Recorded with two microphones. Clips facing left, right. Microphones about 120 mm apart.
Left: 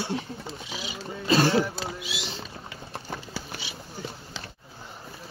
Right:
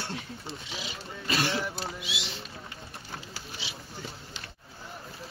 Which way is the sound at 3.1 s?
60° left (ahead or behind).